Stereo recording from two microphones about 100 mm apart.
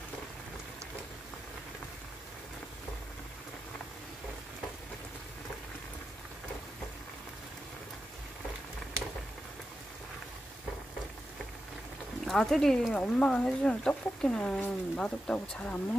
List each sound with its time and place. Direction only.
12.3 s speech: 5° left (ahead or behind)